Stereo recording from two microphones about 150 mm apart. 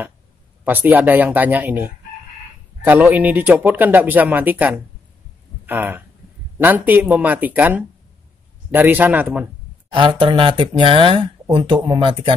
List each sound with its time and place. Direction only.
0.7 s speech: 15° right (ahead or behind)
9.9 s speech: 35° right (ahead or behind)